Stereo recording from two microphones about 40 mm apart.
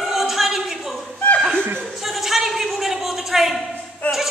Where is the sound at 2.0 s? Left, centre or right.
Centre.